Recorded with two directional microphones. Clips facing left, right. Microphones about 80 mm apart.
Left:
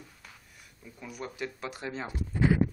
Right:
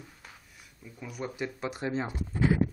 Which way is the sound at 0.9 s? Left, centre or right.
Centre.